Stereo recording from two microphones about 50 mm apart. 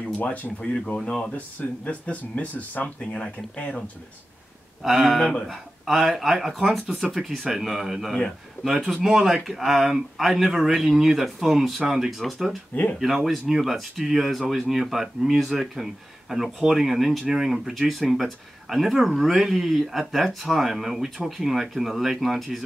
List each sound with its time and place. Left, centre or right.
0.2 s speech: left
0.6 s speech: left
4.8 s speech: centre